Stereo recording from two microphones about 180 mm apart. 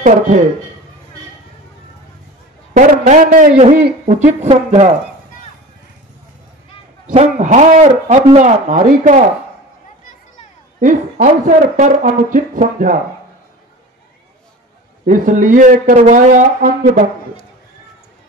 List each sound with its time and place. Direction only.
2.7 s speech: 45° right (ahead or behind)
7.1 s speech: 45° right (ahead or behind)
10.8 s speech: 45° right (ahead or behind)
15.0 s speech: 45° right (ahead or behind)